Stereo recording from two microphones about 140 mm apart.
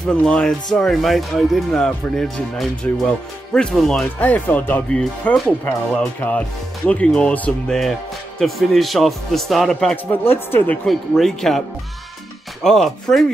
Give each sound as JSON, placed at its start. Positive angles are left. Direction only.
{"t": 0.0, "sound": "speech", "side_deg": 5}
{"t": 10.0, "sound": "speech", "side_deg": 15}
{"t": 10.9, "sound": "speech", "side_deg": 0}
{"t": 12.6, "sound": "speech", "side_deg": 0}